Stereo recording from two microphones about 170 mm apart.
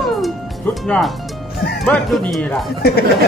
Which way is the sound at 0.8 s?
5° left (ahead or behind).